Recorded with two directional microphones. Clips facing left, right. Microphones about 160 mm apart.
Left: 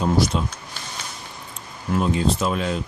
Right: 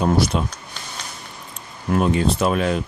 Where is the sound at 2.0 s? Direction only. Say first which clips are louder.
Right 2 dB; 65° right (ahead or behind).